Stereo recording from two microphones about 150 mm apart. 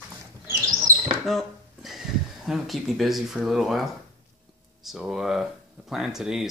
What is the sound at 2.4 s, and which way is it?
Speech, centre (ahead or behind).